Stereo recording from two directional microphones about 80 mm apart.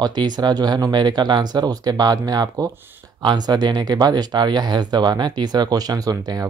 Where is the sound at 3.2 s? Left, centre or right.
Right.